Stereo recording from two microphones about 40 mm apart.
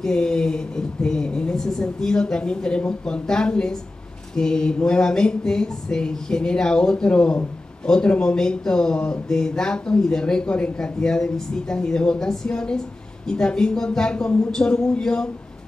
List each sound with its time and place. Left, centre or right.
0.0 s a woman's voice: centre